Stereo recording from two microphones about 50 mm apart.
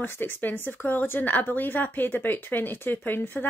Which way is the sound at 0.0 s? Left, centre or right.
Left.